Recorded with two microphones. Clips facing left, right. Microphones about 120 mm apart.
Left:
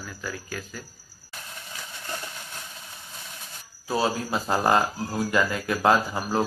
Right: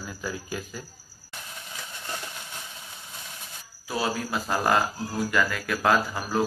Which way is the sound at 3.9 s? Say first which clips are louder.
Left 3 dB; 30° left (ahead or behind).